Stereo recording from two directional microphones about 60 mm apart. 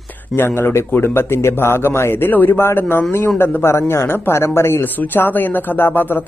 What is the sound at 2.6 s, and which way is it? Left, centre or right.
Speech, left.